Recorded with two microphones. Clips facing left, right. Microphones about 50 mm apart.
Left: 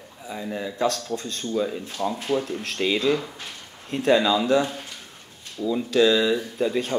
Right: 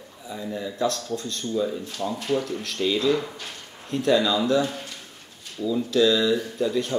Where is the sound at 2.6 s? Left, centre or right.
Left.